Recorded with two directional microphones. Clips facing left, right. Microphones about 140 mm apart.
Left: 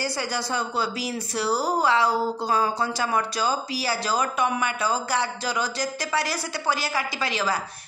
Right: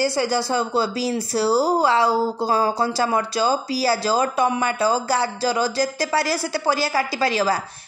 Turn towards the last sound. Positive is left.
turn(degrees=-35)  # may be behind; listen again after turning